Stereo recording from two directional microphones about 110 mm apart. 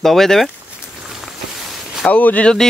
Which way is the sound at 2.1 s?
15° left (ahead or behind).